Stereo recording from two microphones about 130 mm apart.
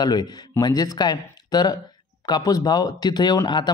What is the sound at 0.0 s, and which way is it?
Speech, 30° left (ahead or behind).